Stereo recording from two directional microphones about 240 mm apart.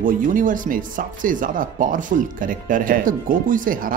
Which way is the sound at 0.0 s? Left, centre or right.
Right.